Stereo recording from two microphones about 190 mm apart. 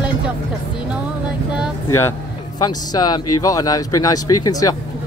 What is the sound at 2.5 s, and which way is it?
Speech, 20° left (ahead or behind).